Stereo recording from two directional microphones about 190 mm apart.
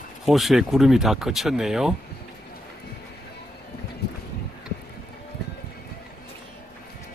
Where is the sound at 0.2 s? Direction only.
Centre (ahead or behind).